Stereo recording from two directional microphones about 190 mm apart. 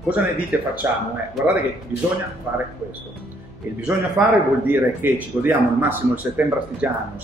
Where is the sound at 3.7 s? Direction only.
5° right (ahead or behind).